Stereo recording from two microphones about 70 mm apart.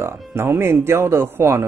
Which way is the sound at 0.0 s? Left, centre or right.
Right.